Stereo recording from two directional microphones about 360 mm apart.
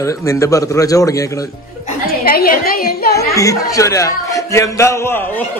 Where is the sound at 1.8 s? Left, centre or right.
Left.